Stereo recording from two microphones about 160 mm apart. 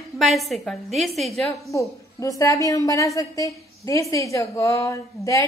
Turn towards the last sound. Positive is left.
turn(degrees=20)  # may be behind; listen again after turning